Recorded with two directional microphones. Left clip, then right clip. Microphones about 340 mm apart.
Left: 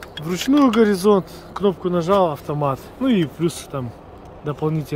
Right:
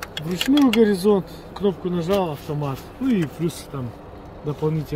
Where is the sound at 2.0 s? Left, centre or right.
Centre.